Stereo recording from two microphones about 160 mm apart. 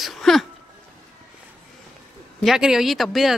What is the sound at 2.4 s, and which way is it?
Speech, 5° right (ahead or behind).